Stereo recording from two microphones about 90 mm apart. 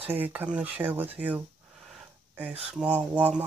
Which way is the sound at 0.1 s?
20° right (ahead or behind).